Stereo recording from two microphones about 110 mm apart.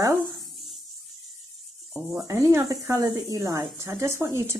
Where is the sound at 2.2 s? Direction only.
30° right (ahead or behind).